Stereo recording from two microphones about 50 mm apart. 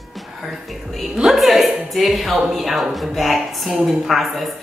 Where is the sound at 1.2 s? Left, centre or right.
Centre.